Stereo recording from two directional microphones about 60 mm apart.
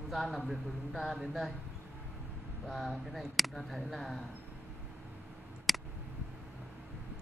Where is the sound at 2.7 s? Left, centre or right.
Centre.